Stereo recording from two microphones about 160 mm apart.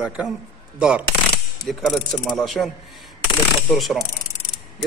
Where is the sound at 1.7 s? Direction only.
Centre (ahead or behind).